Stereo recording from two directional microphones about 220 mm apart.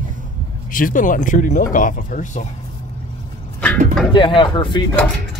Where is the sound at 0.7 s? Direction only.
40° left (ahead or behind).